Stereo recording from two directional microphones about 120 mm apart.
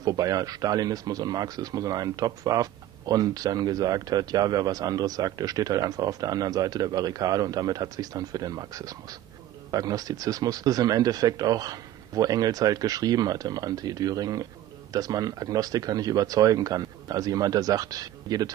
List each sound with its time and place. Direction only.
0.0 s speech: 30° right (ahead or behind)